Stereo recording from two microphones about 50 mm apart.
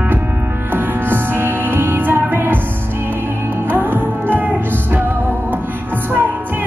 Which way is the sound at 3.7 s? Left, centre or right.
Right.